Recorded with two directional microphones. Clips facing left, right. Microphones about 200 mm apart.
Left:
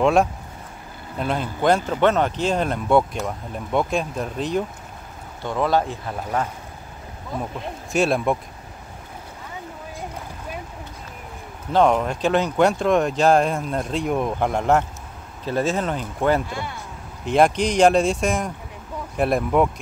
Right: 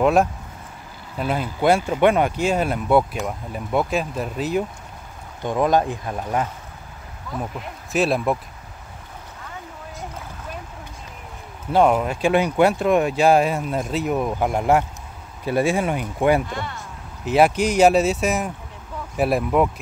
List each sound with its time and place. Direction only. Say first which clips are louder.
0.0 s speech: even; centre (ahead or behind)
5.4 s speech: right 2 dB; 15° right (ahead or behind)
7.9 s speech: even; centre (ahead or behind)
11.7 s speech: right 1 dB; 5° right (ahead or behind)
16.4 s a man's voice: right 1 dB; 10° left (ahead or behind)
17.2 s speech: right 1 dB; 5° right (ahead or behind)